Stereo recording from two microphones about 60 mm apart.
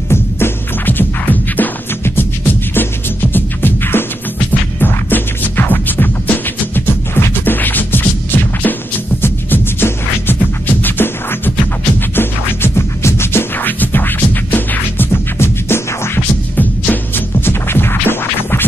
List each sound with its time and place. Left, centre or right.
0.1 s music: left
2.0 s beatboxing: left
4.5 s music: left